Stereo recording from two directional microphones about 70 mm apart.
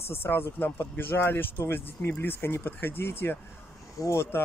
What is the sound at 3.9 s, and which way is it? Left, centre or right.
Speech, left.